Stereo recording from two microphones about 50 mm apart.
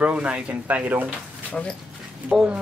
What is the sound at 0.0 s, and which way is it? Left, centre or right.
Speech, right.